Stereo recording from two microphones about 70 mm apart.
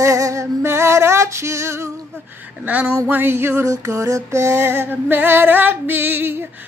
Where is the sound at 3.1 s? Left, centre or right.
Right.